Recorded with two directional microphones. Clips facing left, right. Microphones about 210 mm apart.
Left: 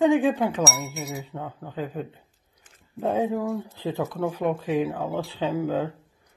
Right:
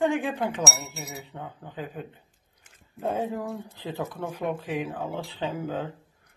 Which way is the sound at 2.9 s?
10° left (ahead or behind).